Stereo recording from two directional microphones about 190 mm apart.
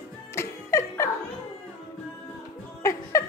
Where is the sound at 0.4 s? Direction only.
15° left (ahead or behind).